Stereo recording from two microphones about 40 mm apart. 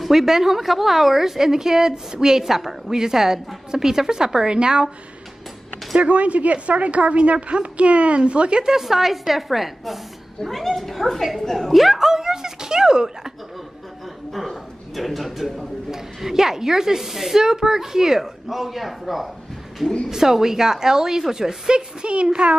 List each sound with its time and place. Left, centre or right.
0.0 s a woman's voice: centre
5.9 s a woman's voice: right
8.6 s a woman's voice: centre
14.3 s a man's voice: centre
22.0 s a woman's voice: right